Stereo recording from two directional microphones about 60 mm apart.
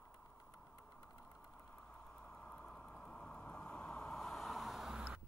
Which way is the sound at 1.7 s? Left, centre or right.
Centre.